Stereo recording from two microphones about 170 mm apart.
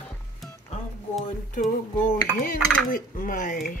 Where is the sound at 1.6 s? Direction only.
55° left (ahead or behind).